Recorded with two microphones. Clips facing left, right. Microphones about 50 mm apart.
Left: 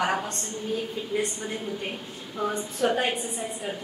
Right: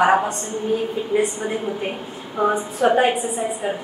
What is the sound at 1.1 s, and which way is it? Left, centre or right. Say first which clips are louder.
A woman's voice: right 8 dB; centre.